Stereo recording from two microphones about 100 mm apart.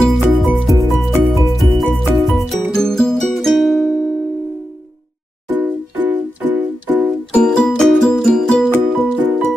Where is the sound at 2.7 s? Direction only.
5° left (ahead or behind).